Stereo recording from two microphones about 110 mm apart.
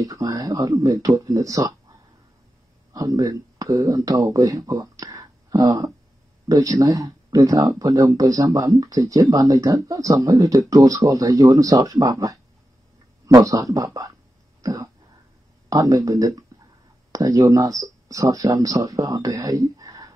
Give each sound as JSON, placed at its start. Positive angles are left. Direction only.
{"t": 0.0, "sound": "speech", "side_deg": -35}
{"t": 2.9, "sound": "speech", "side_deg": -35}
{"t": 4.6, "sound": "a sound", "side_deg": -35}
{"t": 6.8, "sound": "speech", "side_deg": -30}